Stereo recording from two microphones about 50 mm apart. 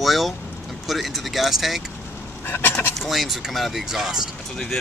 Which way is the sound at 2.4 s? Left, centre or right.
Left.